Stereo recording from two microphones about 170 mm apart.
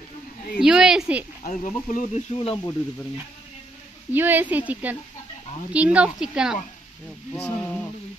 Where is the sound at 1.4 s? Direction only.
50° left (ahead or behind).